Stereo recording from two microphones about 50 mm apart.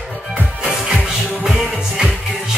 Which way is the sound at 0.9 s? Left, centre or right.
Centre.